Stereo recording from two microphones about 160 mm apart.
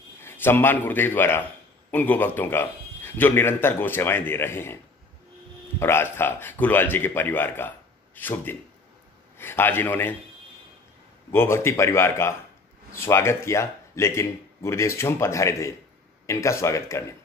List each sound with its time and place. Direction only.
0.2 s a man's voice: 15° left (ahead or behind)
5.8 s a man's voice: 15° left (ahead or behind)
11.3 s a man's voice: 15° left (ahead or behind)